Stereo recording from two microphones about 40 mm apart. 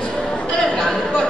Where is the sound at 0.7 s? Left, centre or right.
Centre.